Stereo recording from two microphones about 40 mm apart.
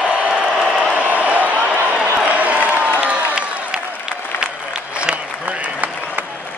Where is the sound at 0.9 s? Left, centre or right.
Right.